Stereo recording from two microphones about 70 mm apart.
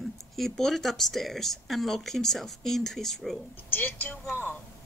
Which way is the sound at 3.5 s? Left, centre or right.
Left.